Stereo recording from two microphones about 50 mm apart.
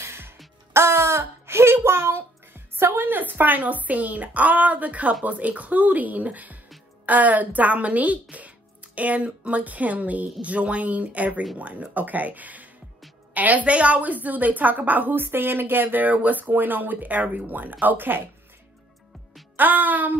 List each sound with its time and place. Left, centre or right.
0.0 s music: right
0.7 s a sound: right
5.2 s a woman's voice: right
19.5 s a woman's voice: right